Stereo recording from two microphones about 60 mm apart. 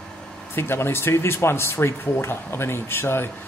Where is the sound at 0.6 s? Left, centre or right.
Left.